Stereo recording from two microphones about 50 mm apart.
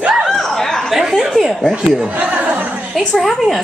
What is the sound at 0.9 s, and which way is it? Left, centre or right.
Chuckle, centre.